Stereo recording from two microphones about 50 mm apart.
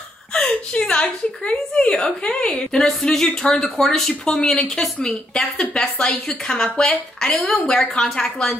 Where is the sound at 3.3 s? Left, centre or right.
Centre.